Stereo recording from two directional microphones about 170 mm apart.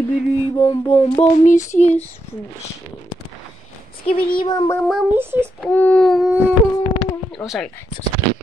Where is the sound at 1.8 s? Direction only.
40° left (ahead or behind).